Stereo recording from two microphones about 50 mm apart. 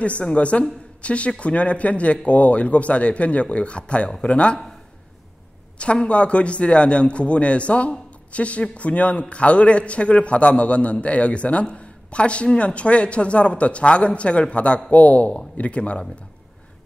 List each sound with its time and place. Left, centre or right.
0.0 s a man's voice: left
5.8 s a man's voice: left